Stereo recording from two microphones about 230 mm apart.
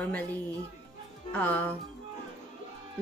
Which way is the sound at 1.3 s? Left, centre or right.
Centre.